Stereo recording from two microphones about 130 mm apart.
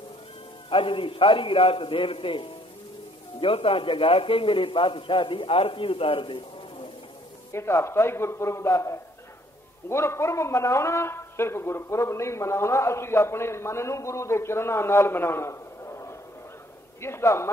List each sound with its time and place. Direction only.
0.7 s a man's voice: 40° left (ahead or behind)
7.5 s a man's voice: 20° left (ahead or behind)